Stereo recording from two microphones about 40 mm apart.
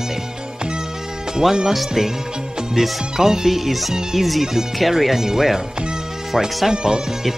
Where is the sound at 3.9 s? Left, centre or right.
Centre.